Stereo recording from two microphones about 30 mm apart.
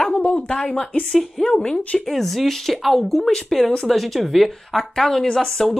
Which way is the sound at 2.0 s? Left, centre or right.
Centre.